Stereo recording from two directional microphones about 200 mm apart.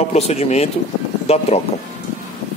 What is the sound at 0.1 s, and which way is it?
Speech, 35° left (ahead or behind).